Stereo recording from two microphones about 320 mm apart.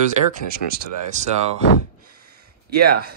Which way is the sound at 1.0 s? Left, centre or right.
Right.